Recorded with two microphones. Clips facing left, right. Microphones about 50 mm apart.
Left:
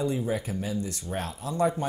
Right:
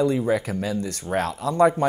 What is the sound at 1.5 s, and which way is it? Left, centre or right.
Speech, right.